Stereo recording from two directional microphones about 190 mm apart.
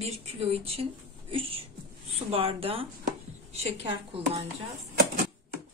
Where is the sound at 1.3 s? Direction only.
30° right (ahead or behind).